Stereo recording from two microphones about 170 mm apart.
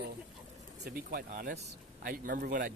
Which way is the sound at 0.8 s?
60° right (ahead or behind).